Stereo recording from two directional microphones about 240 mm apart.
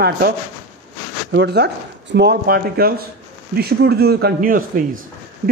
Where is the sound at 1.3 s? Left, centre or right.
Right.